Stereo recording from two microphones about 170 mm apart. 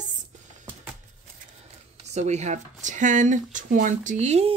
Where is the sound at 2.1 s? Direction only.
40° right (ahead or behind).